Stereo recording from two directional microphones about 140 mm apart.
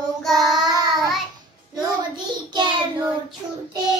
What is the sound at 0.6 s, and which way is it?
Child singing, 30° right (ahead or behind).